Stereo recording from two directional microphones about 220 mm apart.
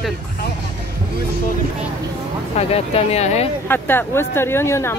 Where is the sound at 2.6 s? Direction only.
30° left (ahead or behind).